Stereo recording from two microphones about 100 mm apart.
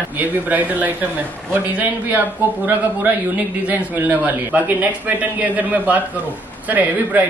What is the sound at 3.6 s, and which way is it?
A man's voice, 20° right (ahead or behind).